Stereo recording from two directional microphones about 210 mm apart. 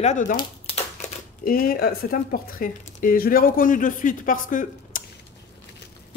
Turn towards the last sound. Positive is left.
turn(degrees=40)  # may be behind; listen again after turning